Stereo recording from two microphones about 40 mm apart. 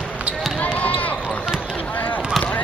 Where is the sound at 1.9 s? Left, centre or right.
Left.